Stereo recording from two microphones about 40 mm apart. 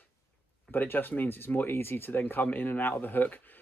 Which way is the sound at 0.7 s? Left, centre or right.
Left.